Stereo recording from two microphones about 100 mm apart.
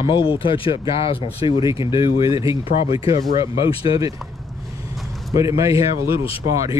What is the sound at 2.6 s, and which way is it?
Speech, 70° left (ahead or behind).